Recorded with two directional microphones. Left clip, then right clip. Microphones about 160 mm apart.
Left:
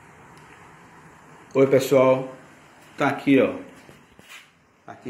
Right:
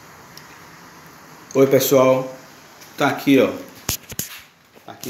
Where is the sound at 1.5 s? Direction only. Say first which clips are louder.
Right 3 dB; centre (ahead or behind).